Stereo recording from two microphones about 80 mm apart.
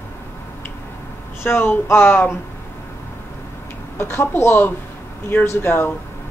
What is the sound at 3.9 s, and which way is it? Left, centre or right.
Speech, left.